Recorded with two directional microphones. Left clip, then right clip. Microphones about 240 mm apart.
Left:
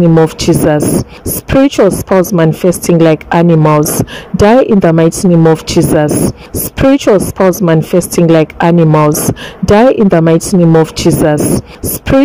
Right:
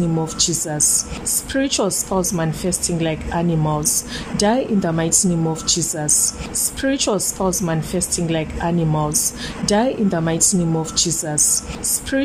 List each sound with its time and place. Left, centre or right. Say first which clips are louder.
0.4 s a woman's voice: left 12 dB; left